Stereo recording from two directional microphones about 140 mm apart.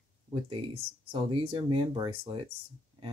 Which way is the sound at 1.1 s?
35° right (ahead or behind).